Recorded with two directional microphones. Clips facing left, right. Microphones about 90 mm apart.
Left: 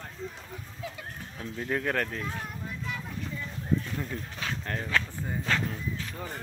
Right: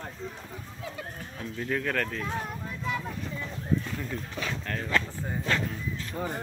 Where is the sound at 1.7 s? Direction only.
20° left (ahead or behind).